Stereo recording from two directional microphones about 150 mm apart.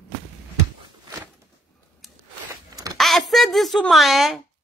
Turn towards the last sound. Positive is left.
turn(degrees=0)  # may be behind; listen again after turning